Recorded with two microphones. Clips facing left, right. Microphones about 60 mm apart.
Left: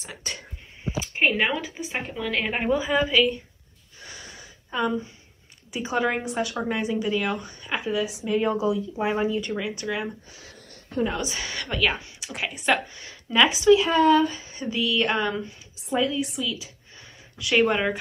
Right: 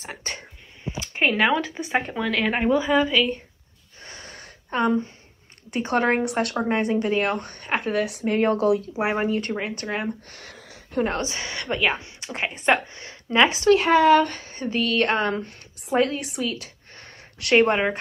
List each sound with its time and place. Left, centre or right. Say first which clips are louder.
0.0 s a sound: right 2 dB; right
1.0 s a sound: right 1 dB; centre
1.5 s speech: right 6 dB; centre
4.0 s wheeze: right 1 dB; right
4.7 s speech: right 4 dB; right
5.7 s speech: right 3 dB; right
10.3 s a sound: right 4 dB; right
11.1 s a woman's voice: right 2 dB; right
13.7 s speech: right 3 dB; right
15.9 s speech: right 2 dB; right